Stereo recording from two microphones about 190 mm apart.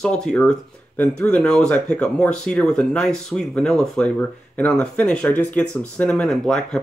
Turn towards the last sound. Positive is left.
turn(degrees=5)  # may be behind; listen again after turning